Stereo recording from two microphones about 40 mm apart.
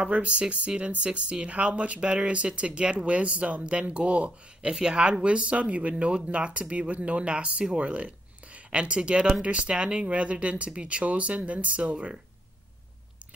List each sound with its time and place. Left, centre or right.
0.0 s speech: right
4.6 s speech: centre